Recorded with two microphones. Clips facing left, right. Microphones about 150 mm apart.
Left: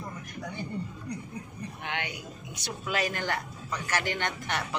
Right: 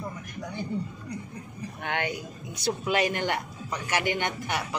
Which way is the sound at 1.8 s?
50° right (ahead or behind).